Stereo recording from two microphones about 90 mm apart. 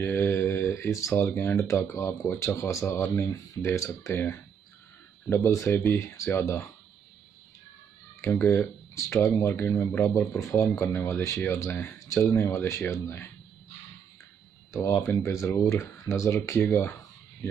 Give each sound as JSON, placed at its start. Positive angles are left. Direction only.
{"t": 0.0, "sound": "speech", "side_deg": 25}
{"t": 5.3, "sound": "speech", "side_deg": 30}
{"t": 8.2, "sound": "speech", "side_deg": 25}
{"t": 14.7, "sound": "speech", "side_deg": 35}
{"t": 15.2, "sound": "speech", "side_deg": 30}